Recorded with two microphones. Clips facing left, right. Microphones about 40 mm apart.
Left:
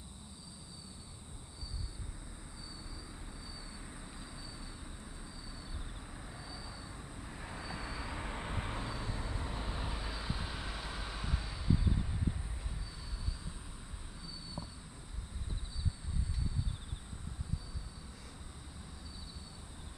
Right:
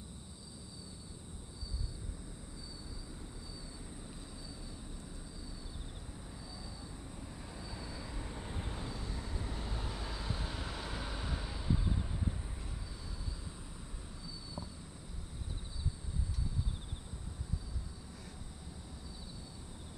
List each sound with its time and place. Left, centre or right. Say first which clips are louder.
7.2 s vehicle: left 7 dB; left; by 12.4 s centre